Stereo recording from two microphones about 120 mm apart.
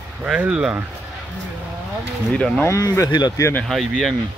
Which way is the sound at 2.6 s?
25° left (ahead or behind).